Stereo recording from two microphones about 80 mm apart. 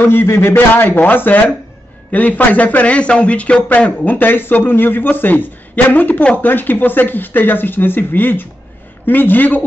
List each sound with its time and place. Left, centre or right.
0.0 s a man's voice: left